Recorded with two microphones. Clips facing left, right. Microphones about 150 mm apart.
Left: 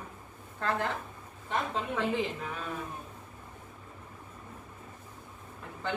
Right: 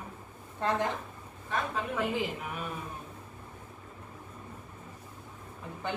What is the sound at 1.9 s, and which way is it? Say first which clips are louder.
Speech: left 1 dB; 5° right (ahead or behind).